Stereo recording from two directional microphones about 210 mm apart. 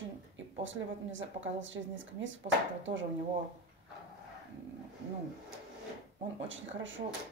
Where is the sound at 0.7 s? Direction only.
65° right (ahead or behind).